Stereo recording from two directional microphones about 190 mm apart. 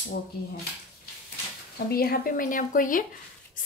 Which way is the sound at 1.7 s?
55° left (ahead or behind).